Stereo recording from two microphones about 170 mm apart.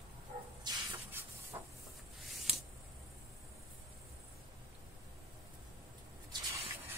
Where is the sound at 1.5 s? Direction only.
15° right (ahead or behind).